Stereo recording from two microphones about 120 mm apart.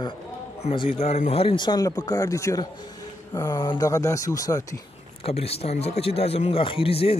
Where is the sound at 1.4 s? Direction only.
40° left (ahead or behind).